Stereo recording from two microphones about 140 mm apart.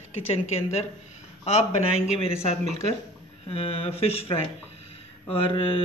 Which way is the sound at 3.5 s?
45° left (ahead or behind).